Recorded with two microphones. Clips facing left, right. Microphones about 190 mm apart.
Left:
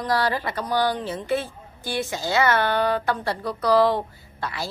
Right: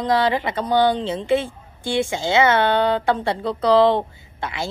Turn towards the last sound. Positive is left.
turn(degrees=-20)  # may be behind; listen again after turning